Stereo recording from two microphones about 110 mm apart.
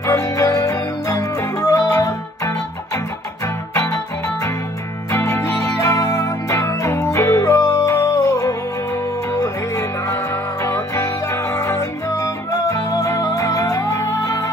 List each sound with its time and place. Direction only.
0.0 s music: 30° left (ahead or behind)
3.7 s music: 30° left (ahead or behind)
5.1 s music: 30° left (ahead or behind)